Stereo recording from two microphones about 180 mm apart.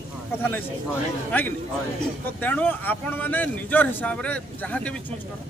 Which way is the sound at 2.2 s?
10° left (ahead or behind).